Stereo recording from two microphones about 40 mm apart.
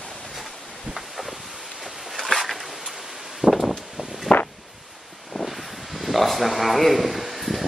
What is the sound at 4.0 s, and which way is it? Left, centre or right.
Walk, centre.